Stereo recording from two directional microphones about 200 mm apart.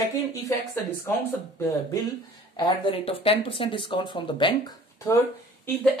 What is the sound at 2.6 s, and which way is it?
Speech, 25° left (ahead or behind).